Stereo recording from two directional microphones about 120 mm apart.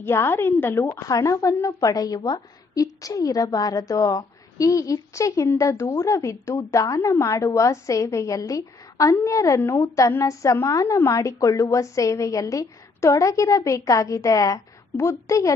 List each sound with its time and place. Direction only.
0.0 s a woman's voice: 20° left (ahead or behind)